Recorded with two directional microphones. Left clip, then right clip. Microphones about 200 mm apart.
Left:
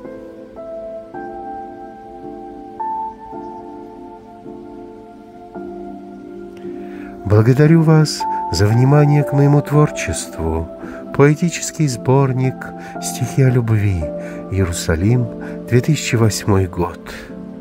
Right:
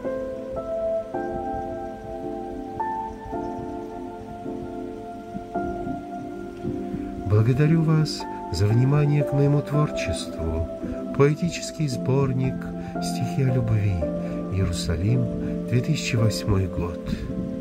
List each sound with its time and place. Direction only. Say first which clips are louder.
7.2 s speech: left 11 dB; 50° left (ahead or behind)